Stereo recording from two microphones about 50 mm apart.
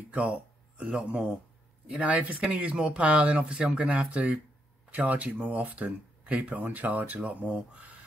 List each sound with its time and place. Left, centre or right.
0.1 s speech: right